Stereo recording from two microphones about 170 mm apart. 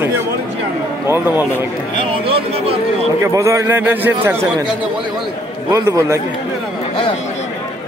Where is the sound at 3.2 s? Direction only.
15° right (ahead or behind).